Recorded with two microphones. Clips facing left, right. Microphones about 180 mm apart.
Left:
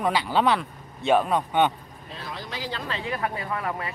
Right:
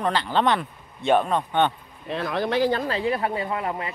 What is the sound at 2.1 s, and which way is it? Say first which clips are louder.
Speech: right 12 dB; 65° right (ahead or behind).